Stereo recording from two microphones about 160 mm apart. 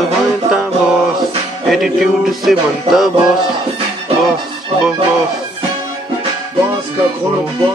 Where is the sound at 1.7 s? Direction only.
Centre (ahead or behind).